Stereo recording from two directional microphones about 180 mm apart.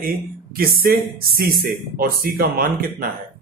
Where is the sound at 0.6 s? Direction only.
55° right (ahead or behind).